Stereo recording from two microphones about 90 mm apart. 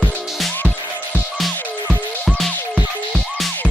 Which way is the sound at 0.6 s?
15° left (ahead or behind).